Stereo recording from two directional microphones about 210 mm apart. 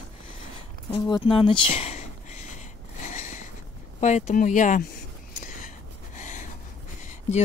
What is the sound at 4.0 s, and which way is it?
Speech, 35° left (ahead or behind).